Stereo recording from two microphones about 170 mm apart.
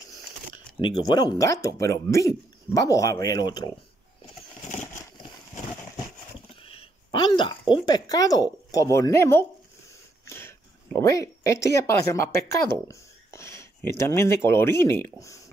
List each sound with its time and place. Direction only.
0.7 s speech: 25° left (ahead or behind)
6.6 s speech: 30° left (ahead or behind); by 9.5 s 15° left (ahead or behind)
10.2 s wheeze: 15° left (ahead or behind)
11.0 s speech: 20° left (ahead or behind)